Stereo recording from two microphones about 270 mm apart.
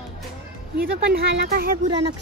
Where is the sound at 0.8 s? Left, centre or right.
Right.